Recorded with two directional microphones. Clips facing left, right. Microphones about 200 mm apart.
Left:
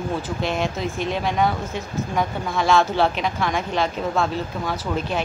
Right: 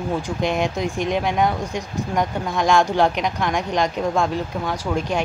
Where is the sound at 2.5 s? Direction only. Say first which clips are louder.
Even; 15° right (ahead or behind).